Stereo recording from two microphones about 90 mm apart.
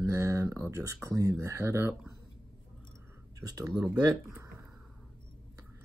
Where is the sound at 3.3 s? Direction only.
40° right (ahead or behind).